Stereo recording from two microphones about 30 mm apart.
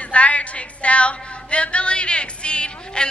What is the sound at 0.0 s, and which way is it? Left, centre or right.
A woman's voice, left.